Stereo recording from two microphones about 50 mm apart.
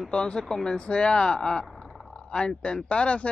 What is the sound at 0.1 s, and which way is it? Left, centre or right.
Speech, centre.